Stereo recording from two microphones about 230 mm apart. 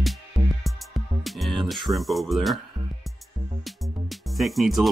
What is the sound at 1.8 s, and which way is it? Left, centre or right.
Speech, centre.